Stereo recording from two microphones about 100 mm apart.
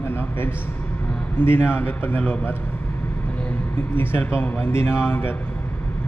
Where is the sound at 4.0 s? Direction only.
25° left (ahead or behind).